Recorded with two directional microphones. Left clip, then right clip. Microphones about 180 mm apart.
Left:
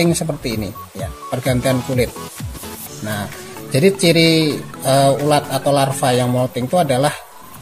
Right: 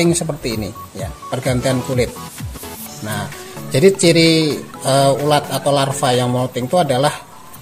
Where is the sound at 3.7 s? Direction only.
15° right (ahead or behind).